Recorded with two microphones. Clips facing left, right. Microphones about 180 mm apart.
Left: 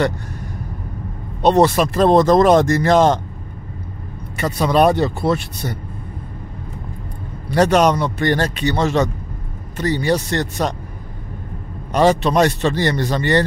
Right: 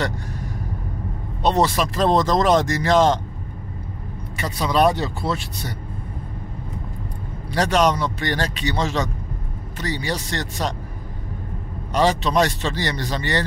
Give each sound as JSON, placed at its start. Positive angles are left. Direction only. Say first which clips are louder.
{"t": 1.4, "sound": "speech", "louder": "left 6 dB", "side_deg": 55}
{"t": 4.4, "sound": "speech", "louder": "left 4 dB", "side_deg": 55}
{"t": 7.5, "sound": "speech", "louder": "left 5 dB", "side_deg": 50}
{"t": 11.9, "sound": "speech", "louder": "left 4 dB", "side_deg": 55}